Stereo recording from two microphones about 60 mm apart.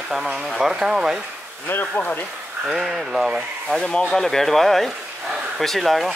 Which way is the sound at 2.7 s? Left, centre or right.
Centre.